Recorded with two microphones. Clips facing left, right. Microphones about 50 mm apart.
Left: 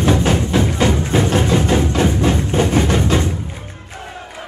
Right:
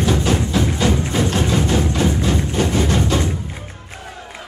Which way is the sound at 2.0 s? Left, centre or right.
Left.